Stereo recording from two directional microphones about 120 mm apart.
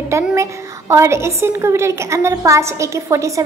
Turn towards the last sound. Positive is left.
turn(degrees=-25)  # may be behind; listen again after turning